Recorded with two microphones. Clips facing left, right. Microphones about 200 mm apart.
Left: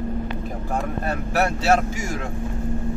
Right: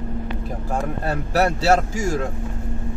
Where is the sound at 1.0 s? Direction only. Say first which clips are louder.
Right 4 dB; 35° right (ahead or behind).